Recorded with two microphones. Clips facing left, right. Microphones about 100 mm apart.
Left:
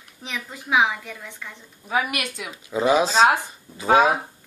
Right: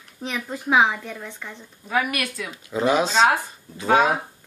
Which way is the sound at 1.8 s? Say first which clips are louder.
Right 1 dB; 15° left (ahead or behind).